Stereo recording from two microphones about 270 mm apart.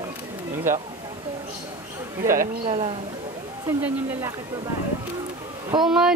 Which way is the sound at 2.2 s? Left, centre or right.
Centre.